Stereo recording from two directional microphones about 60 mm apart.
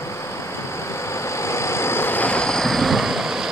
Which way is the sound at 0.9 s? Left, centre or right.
Left.